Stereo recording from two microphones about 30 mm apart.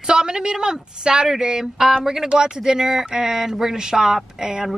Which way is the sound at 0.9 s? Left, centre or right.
Right.